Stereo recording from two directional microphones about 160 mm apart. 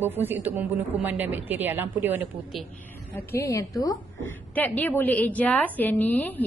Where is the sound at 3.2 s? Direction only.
15° left (ahead or behind).